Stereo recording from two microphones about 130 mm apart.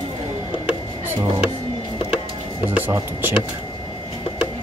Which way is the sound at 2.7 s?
15° right (ahead or behind).